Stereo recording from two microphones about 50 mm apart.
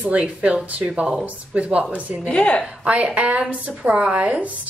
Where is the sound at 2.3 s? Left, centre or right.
Left.